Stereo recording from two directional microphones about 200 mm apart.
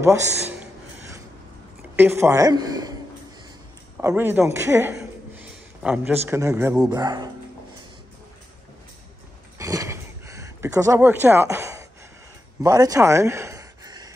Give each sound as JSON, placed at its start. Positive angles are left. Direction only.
{"t": 0.0, "sound": "speech", "side_deg": -10}
{"t": 2.0, "sound": "a man's voice", "side_deg": -10}
{"t": 4.1, "sound": "a man's voice", "side_deg": -10}
{"t": 9.6, "sound": "a sound", "side_deg": -15}